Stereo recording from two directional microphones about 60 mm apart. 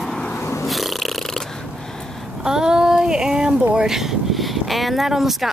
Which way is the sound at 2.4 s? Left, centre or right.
Centre.